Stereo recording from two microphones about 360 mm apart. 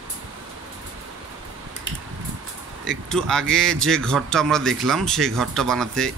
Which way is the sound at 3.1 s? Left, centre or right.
Centre.